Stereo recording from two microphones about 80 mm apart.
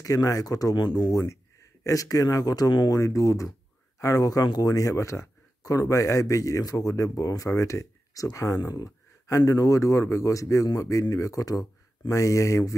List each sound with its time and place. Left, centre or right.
0.0 s speech: left
1.1 s speech: left